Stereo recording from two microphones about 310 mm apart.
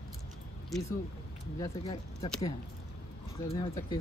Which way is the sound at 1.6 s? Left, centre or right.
Centre.